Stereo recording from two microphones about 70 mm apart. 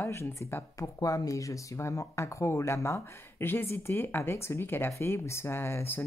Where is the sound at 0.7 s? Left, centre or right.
Left.